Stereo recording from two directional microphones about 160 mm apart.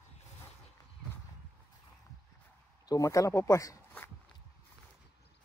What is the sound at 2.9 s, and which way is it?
Speech, 20° left (ahead or behind).